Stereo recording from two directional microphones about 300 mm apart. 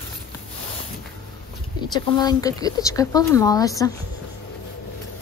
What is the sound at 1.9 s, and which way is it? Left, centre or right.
Speech, centre.